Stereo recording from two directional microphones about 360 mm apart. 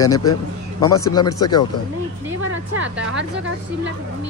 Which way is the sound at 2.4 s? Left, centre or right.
Right.